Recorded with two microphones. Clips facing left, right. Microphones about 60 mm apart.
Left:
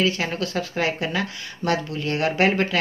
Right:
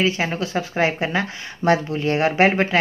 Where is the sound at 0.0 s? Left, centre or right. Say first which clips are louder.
Right 2 dB; right.